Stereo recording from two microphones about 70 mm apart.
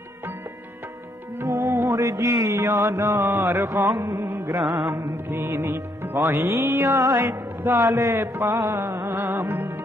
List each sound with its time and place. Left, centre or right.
1.6 s music: right
1.9 s mantra: right
4.6 s music: centre
5.1 s music: right
7.6 s music: right
7.9 s music: right